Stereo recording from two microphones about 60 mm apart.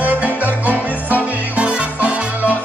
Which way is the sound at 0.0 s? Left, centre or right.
Right.